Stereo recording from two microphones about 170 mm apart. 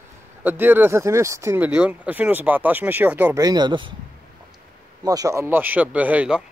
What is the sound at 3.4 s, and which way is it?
Speech, 25° right (ahead or behind).